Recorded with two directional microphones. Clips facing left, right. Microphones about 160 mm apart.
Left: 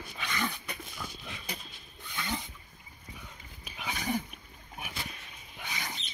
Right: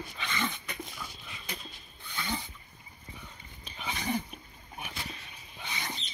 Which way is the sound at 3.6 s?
5° left (ahead or behind).